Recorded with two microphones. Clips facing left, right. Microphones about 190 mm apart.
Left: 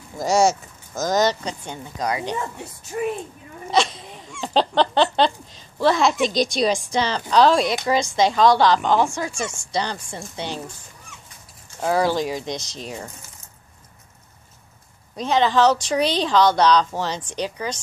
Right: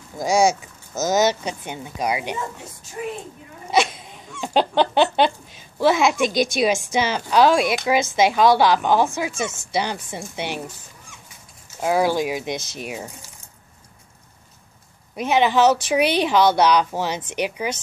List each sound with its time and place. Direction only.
0.2 s speech: centre (ahead or behind)
2.9 s a woman's voice: 70° left (ahead or behind)
3.7 s a sound: 5° right (ahead or behind)
4.4 s speech: 5° right (ahead or behind)
11.8 s speech: 5° right (ahead or behind)
15.1 s speech: 10° right (ahead or behind)